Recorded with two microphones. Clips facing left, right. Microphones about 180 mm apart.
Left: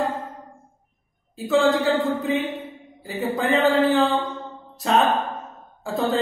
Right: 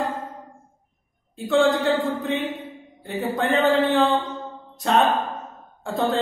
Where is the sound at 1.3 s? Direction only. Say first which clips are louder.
Even; centre (ahead or behind).